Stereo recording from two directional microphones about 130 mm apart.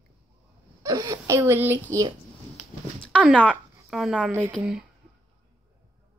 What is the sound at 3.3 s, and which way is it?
Speech, 10° left (ahead or behind).